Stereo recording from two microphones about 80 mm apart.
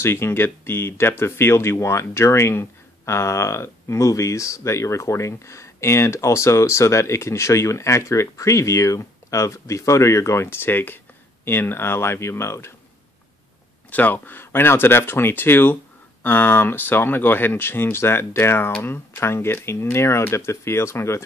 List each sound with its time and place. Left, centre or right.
0.0 s speech: left
13.8 s speech: left